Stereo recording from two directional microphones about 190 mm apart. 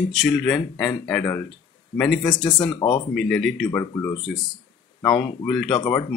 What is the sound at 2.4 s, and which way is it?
Speech, 25° left (ahead or behind).